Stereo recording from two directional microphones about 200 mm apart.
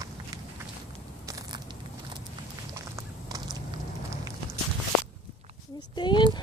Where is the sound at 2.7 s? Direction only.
15° right (ahead or behind).